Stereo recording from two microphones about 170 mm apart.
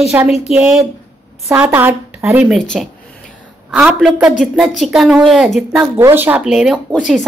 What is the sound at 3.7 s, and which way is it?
A woman's voice, 5° right (ahead or behind).